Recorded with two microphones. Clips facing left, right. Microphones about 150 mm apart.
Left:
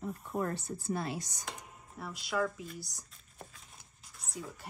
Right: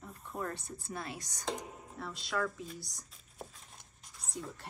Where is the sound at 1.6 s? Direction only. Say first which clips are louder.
Right 7 dB; 35° right (ahead or behind).